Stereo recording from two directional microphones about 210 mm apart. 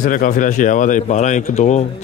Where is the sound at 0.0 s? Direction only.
40° left (ahead or behind).